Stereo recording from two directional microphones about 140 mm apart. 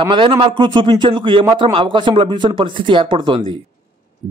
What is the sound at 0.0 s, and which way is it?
A man's voice, 35° right (ahead or behind).